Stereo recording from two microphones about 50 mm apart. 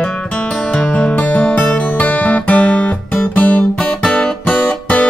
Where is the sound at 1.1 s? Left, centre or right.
Left.